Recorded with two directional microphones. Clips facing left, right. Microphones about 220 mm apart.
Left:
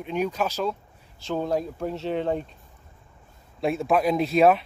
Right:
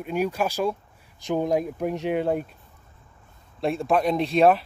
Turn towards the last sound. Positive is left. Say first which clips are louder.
# even
turn(degrees=0)  # may be behind; listen again after turning